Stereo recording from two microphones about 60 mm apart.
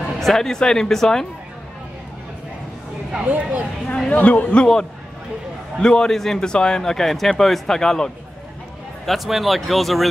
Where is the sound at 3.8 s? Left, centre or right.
Centre.